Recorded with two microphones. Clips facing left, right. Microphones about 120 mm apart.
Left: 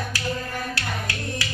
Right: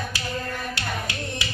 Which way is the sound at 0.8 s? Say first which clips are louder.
Even; 20° right (ahead or behind).